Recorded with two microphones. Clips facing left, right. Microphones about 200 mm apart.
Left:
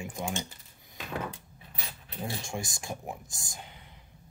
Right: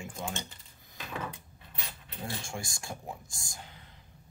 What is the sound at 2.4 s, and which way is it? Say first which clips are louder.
Speech: left 3 dB; 20° left (ahead or behind).